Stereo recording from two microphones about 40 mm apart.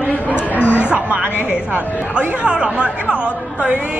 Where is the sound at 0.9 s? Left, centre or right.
Right.